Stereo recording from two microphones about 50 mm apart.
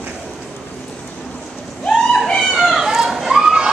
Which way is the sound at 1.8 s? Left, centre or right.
Centre.